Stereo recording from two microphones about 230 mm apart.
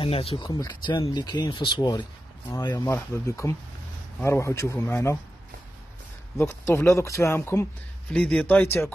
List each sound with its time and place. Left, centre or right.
0.0 s speech: left
6.3 s speech: centre